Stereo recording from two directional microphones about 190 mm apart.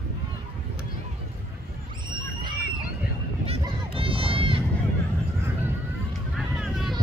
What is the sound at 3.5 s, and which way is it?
Children playing, 30° right (ahead or behind).